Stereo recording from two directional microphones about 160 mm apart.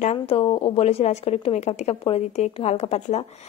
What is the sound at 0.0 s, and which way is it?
Speech, 40° left (ahead or behind).